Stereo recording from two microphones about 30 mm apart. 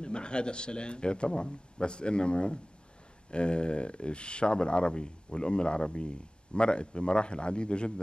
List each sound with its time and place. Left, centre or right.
0.0 s speech: left